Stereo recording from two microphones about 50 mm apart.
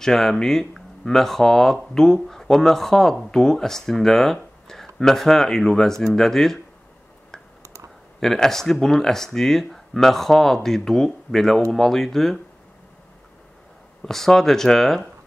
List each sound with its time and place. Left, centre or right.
0.0 s speech: centre
7.6 s clicking: right
8.2 s speech: centre
14.0 s speech: centre